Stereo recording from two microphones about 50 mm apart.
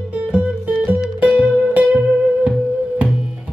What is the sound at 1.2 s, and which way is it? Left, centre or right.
Music, right.